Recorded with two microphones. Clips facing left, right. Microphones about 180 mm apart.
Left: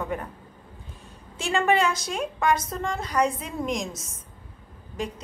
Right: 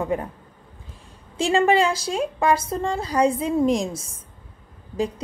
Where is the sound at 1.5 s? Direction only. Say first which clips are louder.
Right 4 dB; 30° right (ahead or behind).